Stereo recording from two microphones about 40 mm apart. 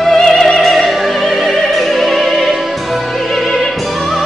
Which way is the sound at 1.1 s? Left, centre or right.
Left.